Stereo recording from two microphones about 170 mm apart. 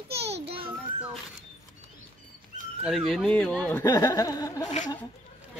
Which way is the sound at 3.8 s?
20° left (ahead or behind).